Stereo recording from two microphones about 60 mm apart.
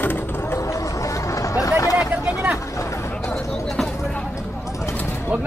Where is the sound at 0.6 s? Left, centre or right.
Left.